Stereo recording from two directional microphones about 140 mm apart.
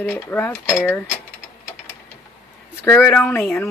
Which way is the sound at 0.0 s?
10° left (ahead or behind).